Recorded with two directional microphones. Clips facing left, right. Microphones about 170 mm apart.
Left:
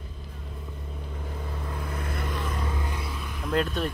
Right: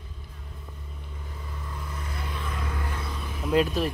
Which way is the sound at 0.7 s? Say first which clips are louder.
Left 6 dB; 60° left (ahead or behind).